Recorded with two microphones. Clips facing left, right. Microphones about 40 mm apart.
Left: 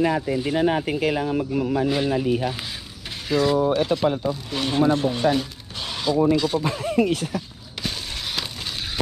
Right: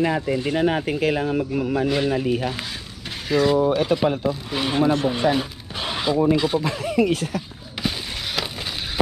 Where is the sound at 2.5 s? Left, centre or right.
Centre.